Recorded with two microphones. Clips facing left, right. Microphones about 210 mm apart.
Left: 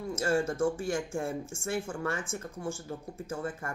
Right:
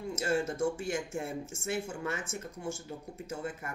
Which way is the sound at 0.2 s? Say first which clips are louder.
Left 3 dB; 25° right (ahead or behind).